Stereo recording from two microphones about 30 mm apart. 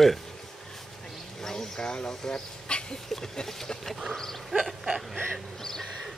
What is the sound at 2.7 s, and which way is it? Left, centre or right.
Dog, left.